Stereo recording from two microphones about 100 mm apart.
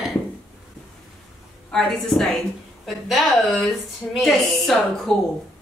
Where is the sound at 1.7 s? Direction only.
5° left (ahead or behind).